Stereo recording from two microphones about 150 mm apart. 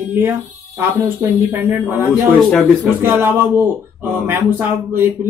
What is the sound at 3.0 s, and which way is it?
Speech, 15° right (ahead or behind).